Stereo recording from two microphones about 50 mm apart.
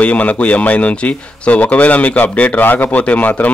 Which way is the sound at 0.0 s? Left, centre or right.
Left.